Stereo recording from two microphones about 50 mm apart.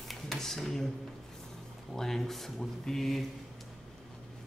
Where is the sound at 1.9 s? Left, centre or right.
Centre.